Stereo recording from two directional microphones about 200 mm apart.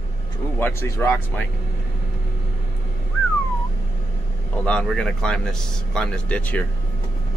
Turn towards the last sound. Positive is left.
turn(degrees=5)  # may be behind; listen again after turning